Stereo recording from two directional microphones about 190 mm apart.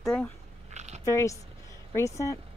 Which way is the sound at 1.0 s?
15° left (ahead or behind).